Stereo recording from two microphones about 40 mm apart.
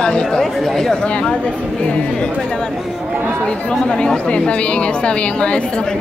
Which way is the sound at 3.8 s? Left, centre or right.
Left.